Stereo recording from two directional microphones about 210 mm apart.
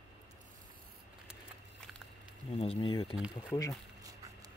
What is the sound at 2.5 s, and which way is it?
Speech, 25° left (ahead or behind).